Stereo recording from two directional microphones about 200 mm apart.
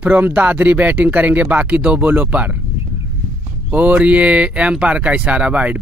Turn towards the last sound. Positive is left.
turn(degrees=-5)  # may be behind; listen again after turning